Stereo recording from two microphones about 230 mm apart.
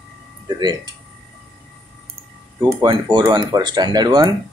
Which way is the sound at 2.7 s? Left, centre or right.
Centre.